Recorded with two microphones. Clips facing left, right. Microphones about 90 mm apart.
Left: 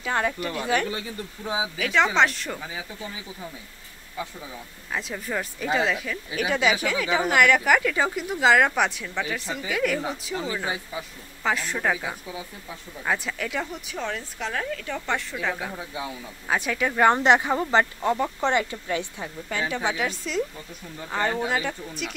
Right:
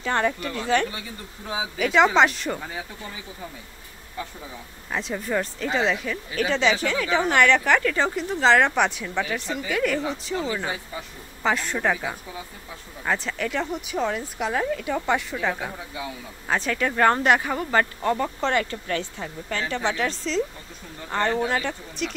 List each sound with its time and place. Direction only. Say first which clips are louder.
0.0 s speech: right 2 dB; 5° left (ahead or behind)
1.8 s speech: right 4 dB; 5° right (ahead or behind)
4.9 s speech: right 3 dB; centre (ahead or behind)
11.4 s speech: right 2 dB; centre (ahead or behind)
17.1 s speech: left 1 dB; 20° left (ahead or behind); by 22.1 s 5° left (ahead or behind)